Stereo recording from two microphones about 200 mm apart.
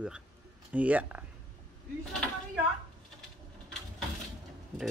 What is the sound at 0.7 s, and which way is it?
Speech, 5° right (ahead or behind).